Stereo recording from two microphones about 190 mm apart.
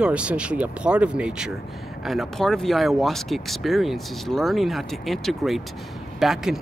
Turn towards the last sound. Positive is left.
turn(degrees=0)  # may be behind; listen again after turning